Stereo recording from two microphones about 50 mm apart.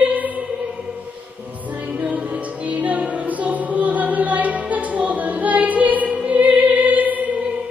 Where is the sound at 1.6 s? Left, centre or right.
Right.